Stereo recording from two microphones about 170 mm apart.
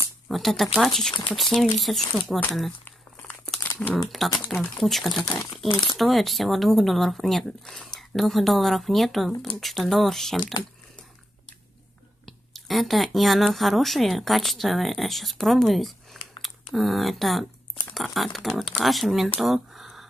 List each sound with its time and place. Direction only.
0.3 s speech: centre (ahead or behind)
2.8 s crumpling: 10° left (ahead or behind)
4.5 s speech: centre (ahead or behind)
5.3 s speech: 20° left (ahead or behind)
5.9 s speech: centre (ahead or behind)
12.3 s speech: centre (ahead or behind)
19.4 s a sound: centre (ahead or behind)